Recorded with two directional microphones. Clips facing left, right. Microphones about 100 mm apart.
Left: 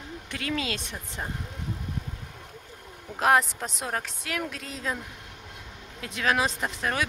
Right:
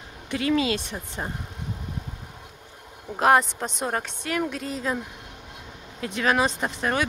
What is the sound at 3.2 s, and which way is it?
Speech, centre (ahead or behind).